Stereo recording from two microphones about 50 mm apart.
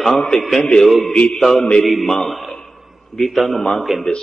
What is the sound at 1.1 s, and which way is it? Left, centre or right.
Mantra, left.